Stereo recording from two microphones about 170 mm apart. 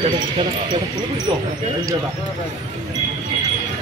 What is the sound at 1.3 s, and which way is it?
Speech, 30° right (ahead or behind).